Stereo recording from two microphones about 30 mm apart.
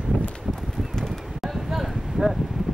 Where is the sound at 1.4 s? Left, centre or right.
Centre.